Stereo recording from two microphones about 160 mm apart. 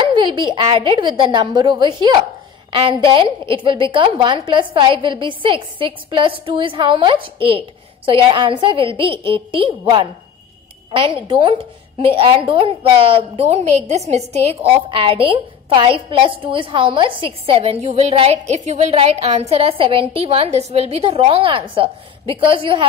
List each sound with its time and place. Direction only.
0.0 s a woman's voice: 30° right (ahead or behind)
11.2 s a woman's voice: 30° right (ahead or behind)